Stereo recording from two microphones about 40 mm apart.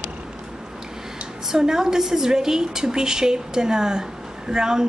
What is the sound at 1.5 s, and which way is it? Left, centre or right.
Speech, centre.